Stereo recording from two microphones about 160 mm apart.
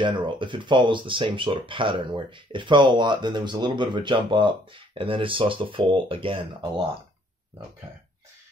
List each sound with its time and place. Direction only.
0.0 s speech: 30° right (ahead or behind)